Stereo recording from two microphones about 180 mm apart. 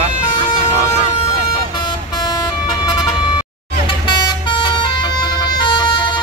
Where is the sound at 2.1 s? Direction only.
20° left (ahead or behind).